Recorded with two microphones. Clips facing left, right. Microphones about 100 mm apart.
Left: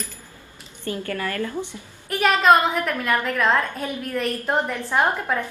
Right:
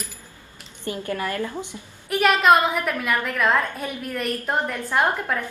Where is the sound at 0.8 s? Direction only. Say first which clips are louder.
Even; 20° right (ahead or behind).